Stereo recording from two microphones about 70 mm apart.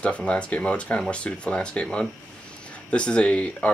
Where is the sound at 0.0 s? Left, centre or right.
Centre.